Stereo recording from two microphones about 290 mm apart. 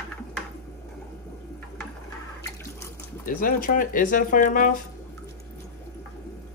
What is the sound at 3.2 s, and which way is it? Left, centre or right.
Speech, left.